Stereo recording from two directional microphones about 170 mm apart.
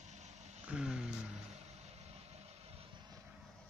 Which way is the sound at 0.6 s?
5° right (ahead or behind).